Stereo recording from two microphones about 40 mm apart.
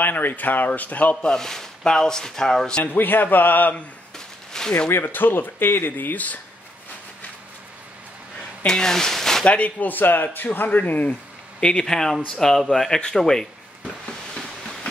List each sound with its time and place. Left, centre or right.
0.0 s a man's voice: left
1.2 s speech: centre
2.8 s a man's voice: left
4.5 s a sound: centre
4.8 s speech: left
6.1 s speech: left
8.6 s speech: centre
9.4 s speech: left
9.8 s a man's voice: left
11.6 s speech: left